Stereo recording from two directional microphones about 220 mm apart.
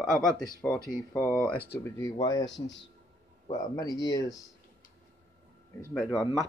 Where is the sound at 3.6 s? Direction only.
15° left (ahead or behind).